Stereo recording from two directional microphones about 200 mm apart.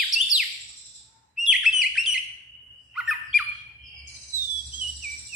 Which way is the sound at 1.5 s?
Centre (ahead or behind).